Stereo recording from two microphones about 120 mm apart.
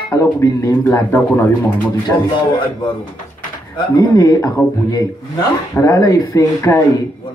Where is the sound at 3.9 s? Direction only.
30° left (ahead or behind).